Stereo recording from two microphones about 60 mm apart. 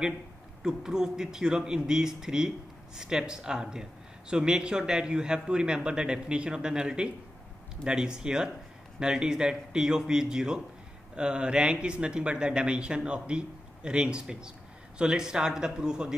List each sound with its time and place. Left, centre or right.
0.6 s speech: centre